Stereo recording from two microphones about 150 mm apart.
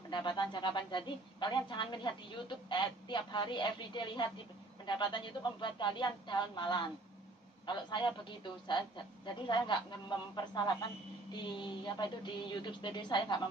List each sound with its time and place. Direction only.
0.1 s speech: 30° left (ahead or behind)